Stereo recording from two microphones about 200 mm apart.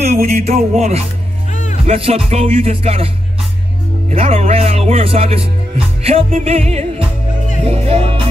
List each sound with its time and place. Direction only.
0.0 s speech: 35° right (ahead or behind)
4.1 s speech: 30° right (ahead or behind)
7.6 s music: 30° right (ahead or behind)